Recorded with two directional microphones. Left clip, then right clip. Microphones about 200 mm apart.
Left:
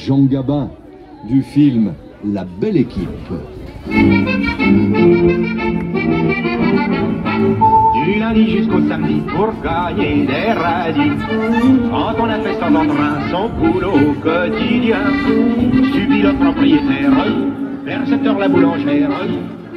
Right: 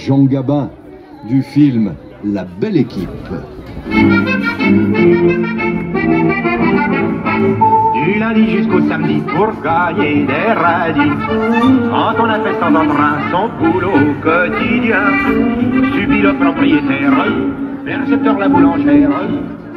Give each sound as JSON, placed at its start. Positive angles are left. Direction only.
{"t": 0.1, "sound": "a man's voice", "side_deg": -30}
{"t": 2.3, "sound": "music", "side_deg": -15}
{"t": 3.9, "sound": "music", "side_deg": -15}
{"t": 4.6, "sound": "accordion", "side_deg": -10}
{"t": 11.8, "sound": "speech", "side_deg": 5}
{"t": 15.0, "sound": "music", "side_deg": 50}